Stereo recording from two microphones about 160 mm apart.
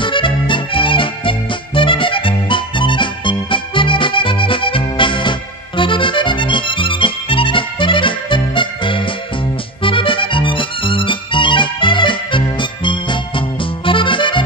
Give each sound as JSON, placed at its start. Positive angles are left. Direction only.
{"t": 0.0, "sound": "music", "side_deg": 30}